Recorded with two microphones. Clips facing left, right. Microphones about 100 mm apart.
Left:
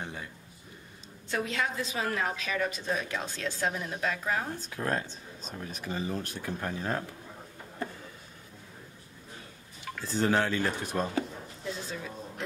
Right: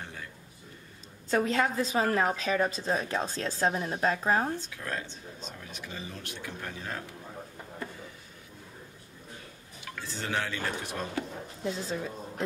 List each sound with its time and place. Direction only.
0.0 s a sound: 20° left (ahead or behind)
1.3 s a woman's voice: 40° right (ahead or behind)
4.6 s speech: 40° left (ahead or behind)
10.0 s speech: 40° left (ahead or behind)
11.6 s a woman's voice: 35° right (ahead or behind)